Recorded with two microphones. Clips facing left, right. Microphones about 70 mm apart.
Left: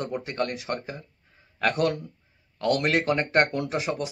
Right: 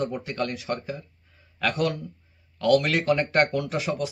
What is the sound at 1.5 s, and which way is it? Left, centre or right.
A man's voice, left.